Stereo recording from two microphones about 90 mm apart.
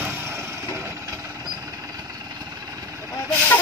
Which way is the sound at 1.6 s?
45° right (ahead or behind).